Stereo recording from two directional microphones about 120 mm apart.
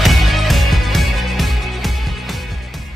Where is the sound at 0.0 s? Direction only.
Centre (ahead or behind).